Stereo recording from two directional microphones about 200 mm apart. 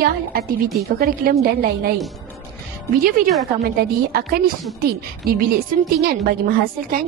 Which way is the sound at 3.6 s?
50° right (ahead or behind).